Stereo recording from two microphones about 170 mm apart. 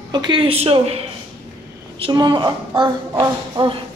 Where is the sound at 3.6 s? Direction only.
25° right (ahead or behind).